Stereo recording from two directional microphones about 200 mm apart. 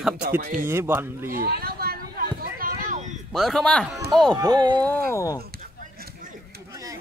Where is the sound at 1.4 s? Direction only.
50° right (ahead or behind).